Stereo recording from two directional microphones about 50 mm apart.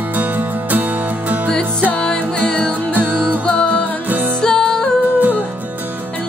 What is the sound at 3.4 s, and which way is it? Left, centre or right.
Music, left.